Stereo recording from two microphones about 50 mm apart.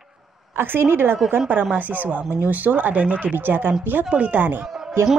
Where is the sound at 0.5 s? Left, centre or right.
Right.